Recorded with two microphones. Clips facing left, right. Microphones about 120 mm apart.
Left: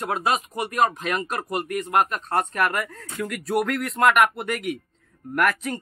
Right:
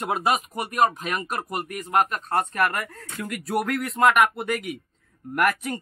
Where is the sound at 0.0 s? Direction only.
10° right (ahead or behind).